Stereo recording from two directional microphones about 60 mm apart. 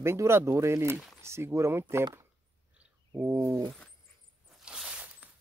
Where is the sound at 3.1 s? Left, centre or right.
Right.